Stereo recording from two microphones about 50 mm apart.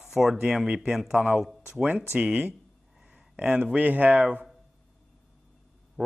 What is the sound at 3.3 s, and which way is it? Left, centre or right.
Speech, right.